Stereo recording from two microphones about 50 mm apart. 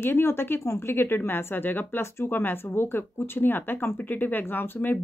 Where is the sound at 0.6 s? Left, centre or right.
Left.